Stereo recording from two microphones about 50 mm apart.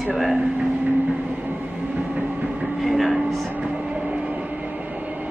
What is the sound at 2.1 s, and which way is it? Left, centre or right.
Train, right.